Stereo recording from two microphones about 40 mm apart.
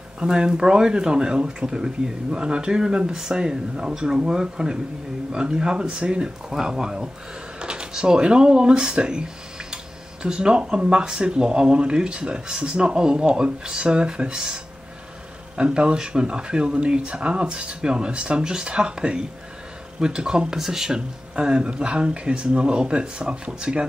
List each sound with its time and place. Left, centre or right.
0.3 s speech: centre
15.5 s speech: right